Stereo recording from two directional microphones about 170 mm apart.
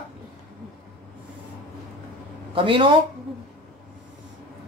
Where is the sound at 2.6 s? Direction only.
30° right (ahead or behind).